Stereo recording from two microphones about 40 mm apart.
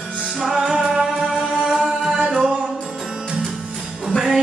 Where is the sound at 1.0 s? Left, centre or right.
Centre.